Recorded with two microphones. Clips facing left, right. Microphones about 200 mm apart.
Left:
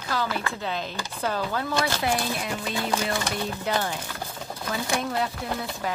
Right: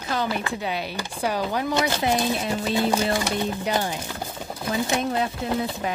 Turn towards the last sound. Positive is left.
turn(degrees=-20)  # may be behind; listen again after turning